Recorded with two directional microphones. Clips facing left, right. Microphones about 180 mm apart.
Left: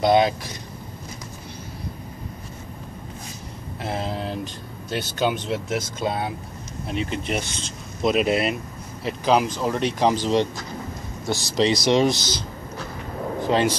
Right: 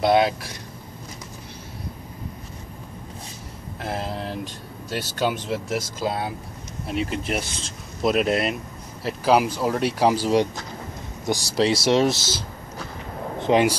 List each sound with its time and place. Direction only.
0.0 s speech: 5° right (ahead or behind)
3.8 s vehicle: centre (ahead or behind)
4.8 s speech: 5° right (ahead or behind)
13.4 s speech: 15° right (ahead or behind)